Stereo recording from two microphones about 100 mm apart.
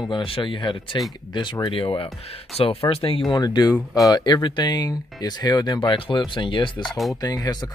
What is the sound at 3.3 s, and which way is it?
Speech, 40° left (ahead or behind).